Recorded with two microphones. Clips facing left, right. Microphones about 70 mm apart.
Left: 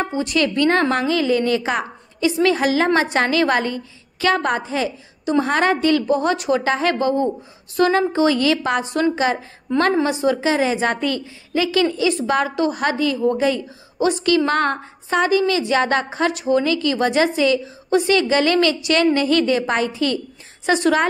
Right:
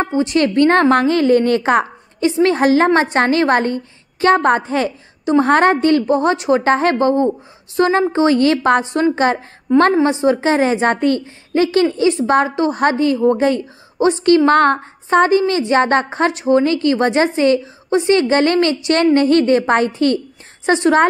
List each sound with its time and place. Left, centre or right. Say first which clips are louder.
0.0 s a woman's voice: right 4 dB; right
10.0 s a woman's voice: right 4 dB; right
17.6 s a woman's voice: right 1 dB; right
20.6 s a woman's voice: right 4 dB; right